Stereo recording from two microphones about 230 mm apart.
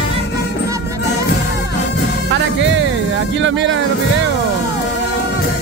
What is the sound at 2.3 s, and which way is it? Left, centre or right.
Music, right.